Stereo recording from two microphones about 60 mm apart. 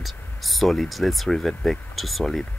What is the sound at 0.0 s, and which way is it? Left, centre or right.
Speech, centre.